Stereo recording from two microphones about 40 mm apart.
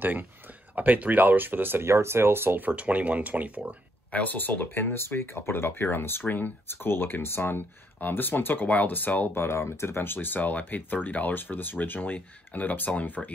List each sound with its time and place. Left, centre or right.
0.0 s speech: right
0.7 s speech: right
2.7 s speech: right
4.1 s speech: left
6.7 s speech: left
8.6 s speech: left
9.3 s speech: left